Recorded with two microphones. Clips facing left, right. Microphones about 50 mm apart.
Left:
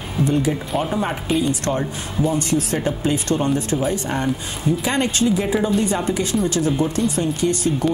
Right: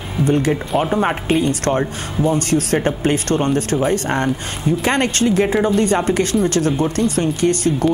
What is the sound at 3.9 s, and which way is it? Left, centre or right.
Speech, right.